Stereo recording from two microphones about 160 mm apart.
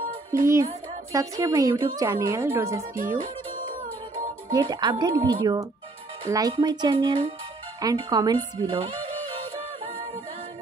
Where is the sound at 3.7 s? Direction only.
55° right (ahead or behind).